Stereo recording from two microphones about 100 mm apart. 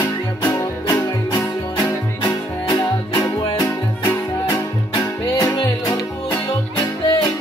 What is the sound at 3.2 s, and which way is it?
Music, 35° left (ahead or behind).